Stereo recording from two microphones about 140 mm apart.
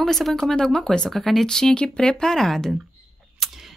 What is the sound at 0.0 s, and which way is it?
Speech, centre (ahead or behind).